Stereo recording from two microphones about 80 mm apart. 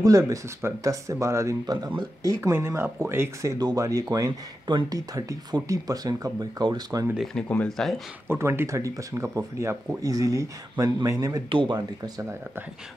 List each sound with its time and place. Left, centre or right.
0.0 s speech: right
2.5 s speech: right
3.5 s speech: right
4.6 s speech: right
4.9 s speech: right
7.3 s speech: centre
7.7 s speech: centre
8.3 s speech: right
11.4 s speech: right
11.7 s speech: right